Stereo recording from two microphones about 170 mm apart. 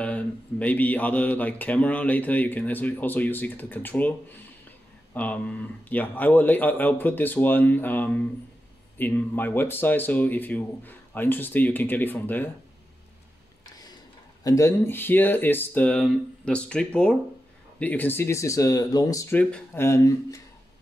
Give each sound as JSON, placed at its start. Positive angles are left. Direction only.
{"t": 0.0, "sound": "speech", "side_deg": 10}
{"t": 5.1, "sound": "speech", "side_deg": 10}
{"t": 14.4, "sound": "speech", "side_deg": 20}